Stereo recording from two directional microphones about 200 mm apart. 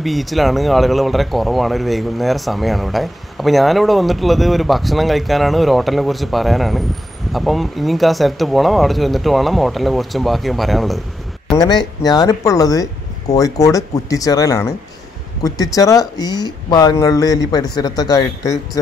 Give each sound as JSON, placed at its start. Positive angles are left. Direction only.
{"t": 0.0, "sound": "speech", "side_deg": 0}
{"t": 11.5, "sound": "speech", "side_deg": 20}